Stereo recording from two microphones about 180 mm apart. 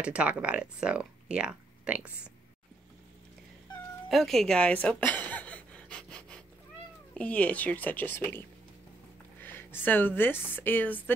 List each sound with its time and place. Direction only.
0.0 s speech: 5° right (ahead or behind)
4.1 s a sound: centre (ahead or behind)
7.2 s a woman's voice: 10° left (ahead or behind)